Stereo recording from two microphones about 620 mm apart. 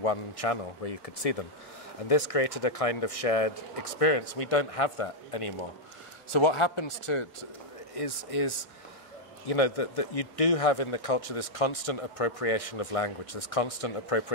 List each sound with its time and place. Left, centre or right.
0.0 s a man's voice: left